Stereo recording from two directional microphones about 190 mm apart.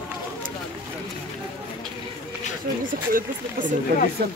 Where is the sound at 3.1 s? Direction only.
45° right (ahead or behind).